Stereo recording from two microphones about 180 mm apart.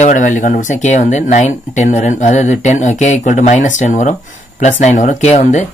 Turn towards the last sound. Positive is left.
turn(degrees=40)  # may be behind; listen again after turning